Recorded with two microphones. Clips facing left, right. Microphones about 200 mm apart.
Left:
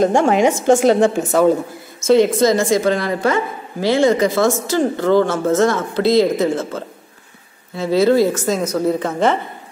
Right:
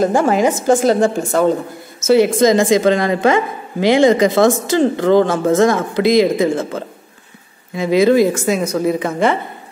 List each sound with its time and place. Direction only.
0.0 s a woman's voice: 5° right (ahead or behind)